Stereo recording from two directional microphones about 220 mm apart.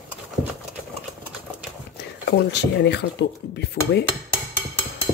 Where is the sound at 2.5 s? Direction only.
50° left (ahead or behind).